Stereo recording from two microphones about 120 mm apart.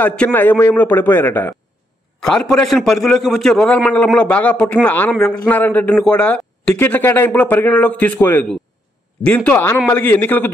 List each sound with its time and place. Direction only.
0.0 s a man's voice: 10° left (ahead or behind)
2.1 s a man's voice: 5° left (ahead or behind)